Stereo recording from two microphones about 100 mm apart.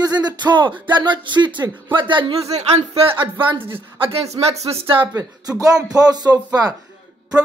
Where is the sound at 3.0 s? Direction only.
60° right (ahead or behind).